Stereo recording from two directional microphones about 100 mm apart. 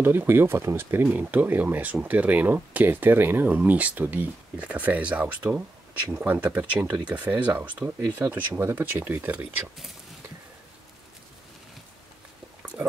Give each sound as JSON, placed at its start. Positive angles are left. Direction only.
{"t": 0.0, "sound": "speech", "side_deg": -20}